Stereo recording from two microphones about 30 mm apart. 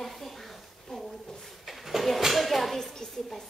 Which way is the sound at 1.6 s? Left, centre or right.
Centre.